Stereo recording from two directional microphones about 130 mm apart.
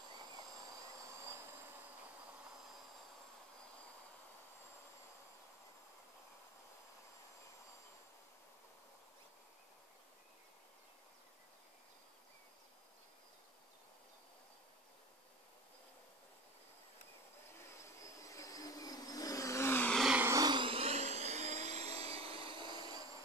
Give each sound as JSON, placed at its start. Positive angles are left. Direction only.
{"t": 17.7, "sound": "vehicle", "side_deg": 25}
{"t": 19.9, "sound": "vehicle", "side_deg": 0}
{"t": 20.2, "sound": "vehicle", "side_deg": -20}
{"t": 20.4, "sound": "dental drill", "side_deg": -40}